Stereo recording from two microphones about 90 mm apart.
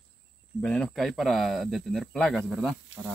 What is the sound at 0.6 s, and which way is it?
Speech, 10° left (ahead or behind).